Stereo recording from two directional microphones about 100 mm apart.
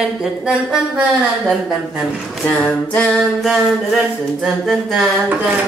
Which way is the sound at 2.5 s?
15° left (ahead or behind).